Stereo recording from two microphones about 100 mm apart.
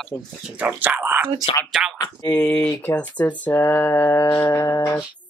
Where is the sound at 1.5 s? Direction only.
70° left (ahead or behind).